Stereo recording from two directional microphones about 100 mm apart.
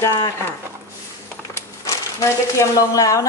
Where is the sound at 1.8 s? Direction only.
30° left (ahead or behind).